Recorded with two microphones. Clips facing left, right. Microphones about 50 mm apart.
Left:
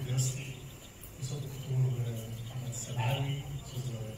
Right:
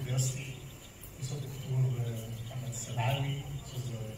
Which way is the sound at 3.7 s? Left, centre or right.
Left.